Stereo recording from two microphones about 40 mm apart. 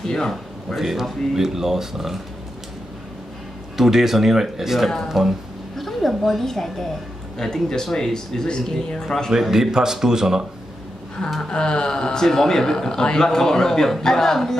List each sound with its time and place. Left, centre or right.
0.0 s a sound: centre
0.7 s speech: centre
3.7 s speech: centre
5.8 s a woman's voice: centre
9.3 s speech: centre
11.4 s a man's voice: left